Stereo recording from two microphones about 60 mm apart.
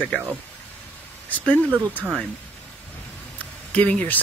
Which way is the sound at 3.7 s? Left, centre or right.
Left.